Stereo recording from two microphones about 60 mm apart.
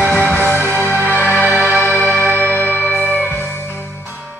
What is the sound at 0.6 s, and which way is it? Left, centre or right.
Music, right.